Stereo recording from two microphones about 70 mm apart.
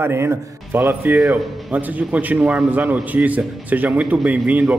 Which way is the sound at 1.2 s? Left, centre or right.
Centre.